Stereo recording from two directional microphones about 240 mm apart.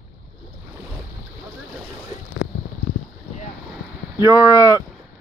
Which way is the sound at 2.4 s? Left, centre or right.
Left.